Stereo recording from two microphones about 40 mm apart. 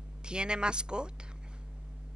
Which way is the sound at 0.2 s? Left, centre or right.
Right.